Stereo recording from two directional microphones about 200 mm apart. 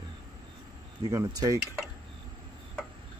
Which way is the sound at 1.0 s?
15° right (ahead or behind).